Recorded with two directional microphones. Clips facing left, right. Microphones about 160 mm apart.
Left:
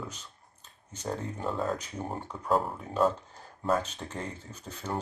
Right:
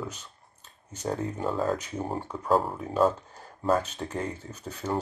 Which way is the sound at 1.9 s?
30° right (ahead or behind).